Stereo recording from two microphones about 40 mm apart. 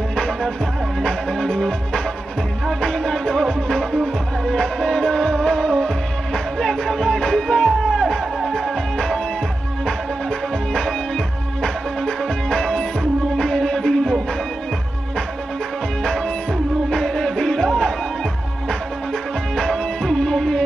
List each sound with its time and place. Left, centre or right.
0.1 s music: centre
2.8 s music: centre
8.4 s music: centre
8.9 s music: centre
10.7 s music: centre
12.4 s music: centre
16.0 s music: centre
19.5 s music: centre